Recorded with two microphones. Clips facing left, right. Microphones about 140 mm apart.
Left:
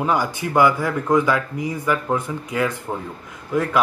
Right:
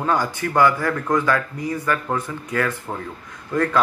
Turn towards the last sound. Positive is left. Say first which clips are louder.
# even
turn(degrees=10)  # may be behind; listen again after turning